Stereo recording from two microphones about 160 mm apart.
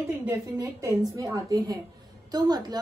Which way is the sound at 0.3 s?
20° right (ahead or behind).